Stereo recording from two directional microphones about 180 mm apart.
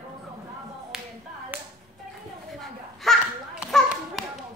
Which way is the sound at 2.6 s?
Centre (ahead or behind).